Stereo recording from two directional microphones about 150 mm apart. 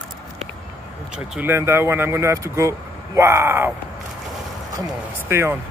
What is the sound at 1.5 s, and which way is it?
Speech, 15° right (ahead or behind).